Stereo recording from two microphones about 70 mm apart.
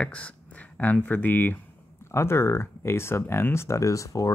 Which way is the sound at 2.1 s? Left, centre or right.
Left.